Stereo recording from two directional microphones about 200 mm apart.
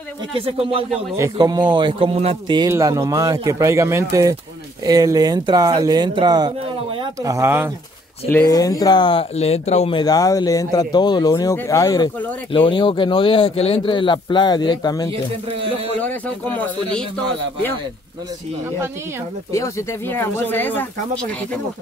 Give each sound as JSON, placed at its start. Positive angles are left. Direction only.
{"t": 0.3, "sound": "speech", "side_deg": -25}
{"t": 1.1, "sound": "speech", "side_deg": -15}
{"t": 8.3, "sound": "speech", "side_deg": 15}
{"t": 16.0, "sound": "speech", "side_deg": 10}
{"t": 19.5, "sound": "speech", "side_deg": 15}